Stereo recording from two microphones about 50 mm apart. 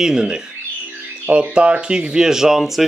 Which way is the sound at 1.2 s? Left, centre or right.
Right.